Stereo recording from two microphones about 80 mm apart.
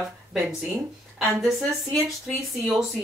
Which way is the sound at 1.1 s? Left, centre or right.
Centre.